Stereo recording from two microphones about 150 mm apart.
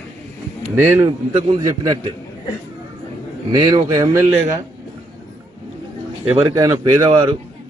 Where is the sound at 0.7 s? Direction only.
15° right (ahead or behind).